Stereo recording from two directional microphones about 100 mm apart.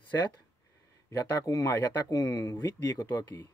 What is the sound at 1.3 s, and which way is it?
Speech, 35° left (ahead or behind).